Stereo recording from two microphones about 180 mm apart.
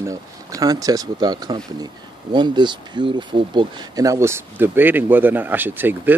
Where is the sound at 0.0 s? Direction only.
20° right (ahead or behind).